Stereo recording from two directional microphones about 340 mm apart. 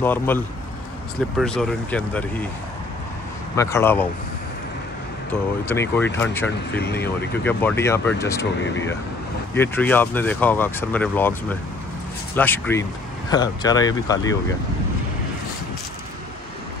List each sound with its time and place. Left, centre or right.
0.0 s speech: centre
1.4 s speech: centre
3.5 s speech: centre
5.3 s speech: centre
6.7 s speech: left
7.0 s speech: centre
9.5 s speech: centre